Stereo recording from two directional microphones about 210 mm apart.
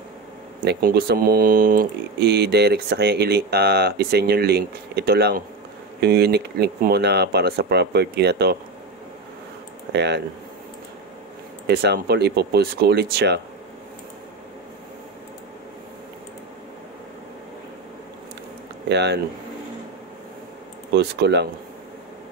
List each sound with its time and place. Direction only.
0.7 s speech: 50° right (ahead or behind)
9.9 s speech: 55° right (ahead or behind)
11.6 s speech: 50° right (ahead or behind)
18.9 s speech: 55° right (ahead or behind)
20.9 s speech: 55° right (ahead or behind)